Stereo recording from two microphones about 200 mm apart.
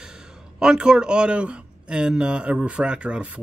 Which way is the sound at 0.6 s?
5° right (ahead or behind).